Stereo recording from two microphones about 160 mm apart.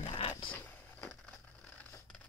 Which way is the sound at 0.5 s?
10° left (ahead or behind).